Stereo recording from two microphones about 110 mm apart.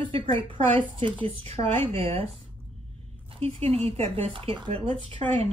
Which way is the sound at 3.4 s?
70° right (ahead or behind).